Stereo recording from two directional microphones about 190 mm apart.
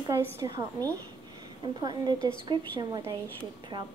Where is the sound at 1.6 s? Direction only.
20° right (ahead or behind).